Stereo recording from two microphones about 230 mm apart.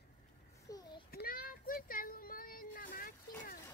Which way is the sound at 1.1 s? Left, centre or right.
Left.